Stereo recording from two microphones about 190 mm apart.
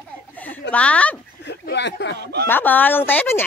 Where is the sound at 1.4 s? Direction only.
60° left (ahead or behind).